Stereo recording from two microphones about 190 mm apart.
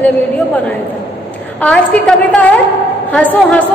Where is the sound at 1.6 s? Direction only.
5° left (ahead or behind).